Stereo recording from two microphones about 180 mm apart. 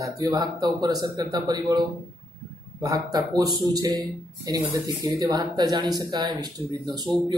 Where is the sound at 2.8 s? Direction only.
20° right (ahead or behind).